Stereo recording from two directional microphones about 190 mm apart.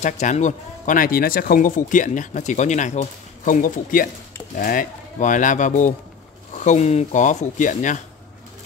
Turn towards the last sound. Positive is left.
turn(degrees=40)  # may be behind; listen again after turning